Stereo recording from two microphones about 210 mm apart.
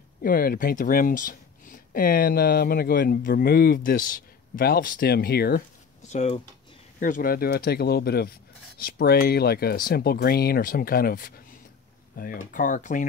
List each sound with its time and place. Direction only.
0.2 s speech: 45° left (ahead or behind)
6.0 s speech: 30° left (ahead or behind)